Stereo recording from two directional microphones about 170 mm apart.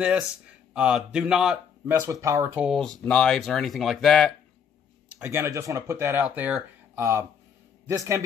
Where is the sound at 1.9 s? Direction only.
20° right (ahead or behind).